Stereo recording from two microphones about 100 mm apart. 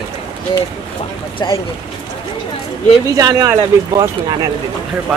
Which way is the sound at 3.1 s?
35° right (ahead or behind).